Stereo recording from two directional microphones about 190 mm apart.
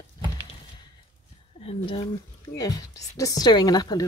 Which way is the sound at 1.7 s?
30° left (ahead or behind).